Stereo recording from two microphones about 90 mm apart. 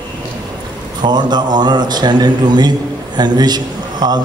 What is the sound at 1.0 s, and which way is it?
A man's voice, 55° right (ahead or behind).